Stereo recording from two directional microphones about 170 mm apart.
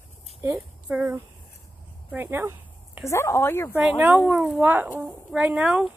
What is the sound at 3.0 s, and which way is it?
Speech, 15° left (ahead or behind).